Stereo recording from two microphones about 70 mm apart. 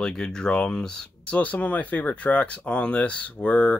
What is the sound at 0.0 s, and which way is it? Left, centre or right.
Speech, centre.